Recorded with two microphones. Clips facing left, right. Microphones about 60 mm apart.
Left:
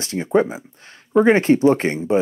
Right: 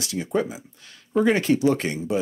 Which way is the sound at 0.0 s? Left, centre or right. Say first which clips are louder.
Left 7 dB; left.